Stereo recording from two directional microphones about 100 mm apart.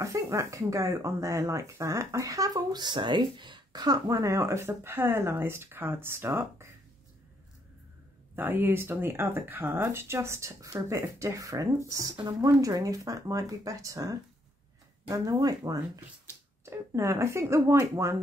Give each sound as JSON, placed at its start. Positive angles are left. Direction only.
{"t": 0.0, "sound": "speech", "side_deg": -35}
{"t": 8.4, "sound": "speech", "side_deg": -20}
{"t": 16.6, "sound": "speech", "side_deg": -30}